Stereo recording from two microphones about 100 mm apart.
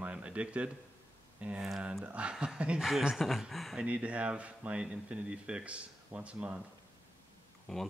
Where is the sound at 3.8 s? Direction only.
10° right (ahead or behind).